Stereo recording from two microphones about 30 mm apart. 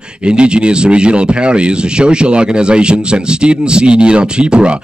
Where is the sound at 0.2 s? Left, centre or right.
Right.